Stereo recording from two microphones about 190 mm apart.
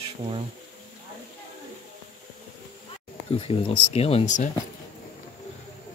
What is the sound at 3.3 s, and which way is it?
Speech, 30° left (ahead or behind).